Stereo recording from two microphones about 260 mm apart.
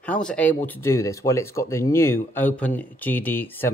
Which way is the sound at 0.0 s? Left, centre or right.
Centre.